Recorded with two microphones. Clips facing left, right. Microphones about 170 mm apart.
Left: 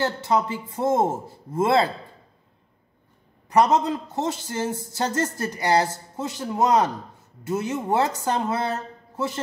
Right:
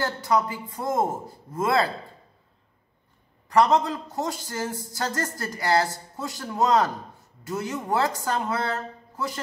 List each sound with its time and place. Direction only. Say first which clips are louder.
0.0 s a man's voice: left 1 dB; 25° left (ahead or behind)
3.4 s a man's voice: left 1 dB; 20° left (ahead or behind)